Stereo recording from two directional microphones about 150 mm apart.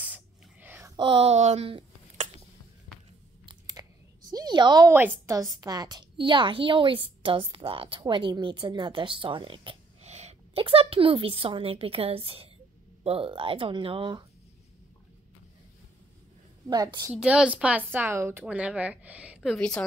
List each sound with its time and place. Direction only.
0.0 s whispering: 10° right (ahead or behind)
0.9 s speech: 35° right (ahead or behind)
3.4 s a sound: 25° right (ahead or behind)
4.3 s a woman's voice: 25° right (ahead or behind)
4.9 s a woman's voice: 15° right (ahead or behind); by 14.2 s 35° right (ahead or behind)
16.6 s a woman's voice: 25° right (ahead or behind)
17.1 s speech: 5° right (ahead or behind)